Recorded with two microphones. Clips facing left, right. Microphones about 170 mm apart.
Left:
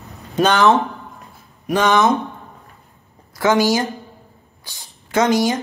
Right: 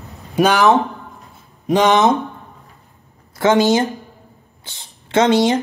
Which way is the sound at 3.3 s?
25° right (ahead or behind).